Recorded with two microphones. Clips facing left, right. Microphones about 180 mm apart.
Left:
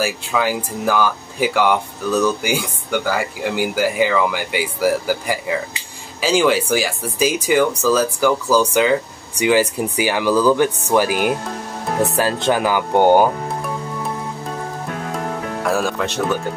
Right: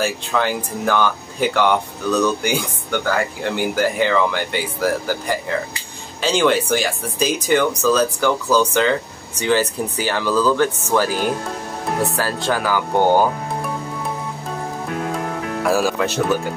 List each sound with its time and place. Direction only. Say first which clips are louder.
0.0 s speech: even; 5° left (ahead or behind)
15.6 s speech: right 2 dB; 5° right (ahead or behind)